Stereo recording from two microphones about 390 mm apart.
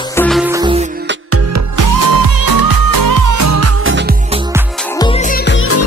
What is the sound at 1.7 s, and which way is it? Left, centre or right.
Music, right.